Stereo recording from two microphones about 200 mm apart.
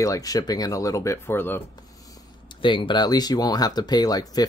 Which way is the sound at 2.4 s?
25° left (ahead or behind).